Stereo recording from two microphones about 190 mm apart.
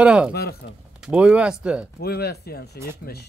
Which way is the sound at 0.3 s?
55° left (ahead or behind).